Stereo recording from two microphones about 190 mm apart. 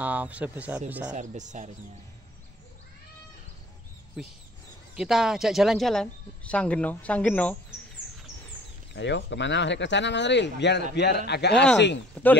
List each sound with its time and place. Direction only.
0.0 s speech: 10° right (ahead or behind)
1.1 s speech: 40° right (ahead or behind)
4.2 s speech: centre (ahead or behind)
8.9 s a man's voice: 65° left (ahead or behind)
12.2 s speech: 10° left (ahead or behind)